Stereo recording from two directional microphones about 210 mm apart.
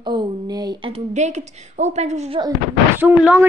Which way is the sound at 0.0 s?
20° right (ahead or behind).